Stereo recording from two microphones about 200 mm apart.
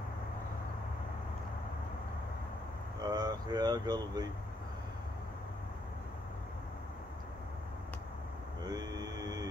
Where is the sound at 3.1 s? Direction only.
20° right (ahead or behind).